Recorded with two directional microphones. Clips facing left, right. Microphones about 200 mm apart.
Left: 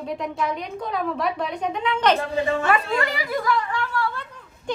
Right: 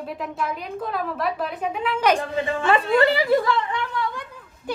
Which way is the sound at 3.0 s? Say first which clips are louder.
Right 7 dB; 30° right (ahead or behind).